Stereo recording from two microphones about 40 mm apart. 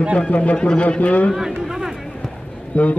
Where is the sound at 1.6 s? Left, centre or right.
Centre.